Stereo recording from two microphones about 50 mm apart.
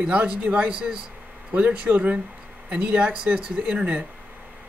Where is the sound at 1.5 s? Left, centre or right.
Right.